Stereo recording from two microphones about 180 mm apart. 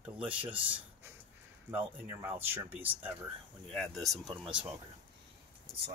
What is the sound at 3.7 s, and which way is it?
Speech, centre (ahead or behind).